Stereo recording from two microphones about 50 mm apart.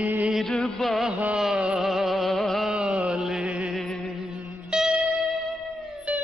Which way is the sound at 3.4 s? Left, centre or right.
Right.